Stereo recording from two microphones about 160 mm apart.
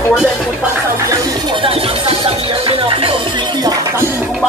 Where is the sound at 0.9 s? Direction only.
20° right (ahead or behind).